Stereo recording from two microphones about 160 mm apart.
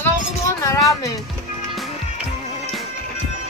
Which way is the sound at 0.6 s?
20° left (ahead or behind).